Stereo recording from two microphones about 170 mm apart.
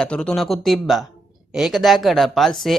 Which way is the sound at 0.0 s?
5° left (ahead or behind).